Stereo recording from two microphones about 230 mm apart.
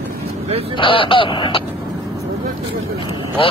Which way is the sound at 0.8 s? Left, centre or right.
Left.